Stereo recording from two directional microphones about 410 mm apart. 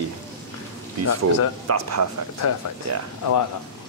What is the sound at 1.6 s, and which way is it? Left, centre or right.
Speech, right.